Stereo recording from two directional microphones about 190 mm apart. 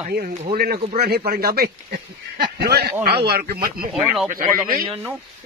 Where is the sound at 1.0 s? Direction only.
55° right (ahead or behind).